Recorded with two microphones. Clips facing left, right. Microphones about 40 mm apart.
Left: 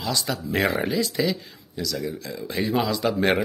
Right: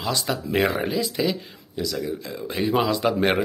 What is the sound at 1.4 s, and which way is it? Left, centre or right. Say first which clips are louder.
Speech: right 2 dB; right.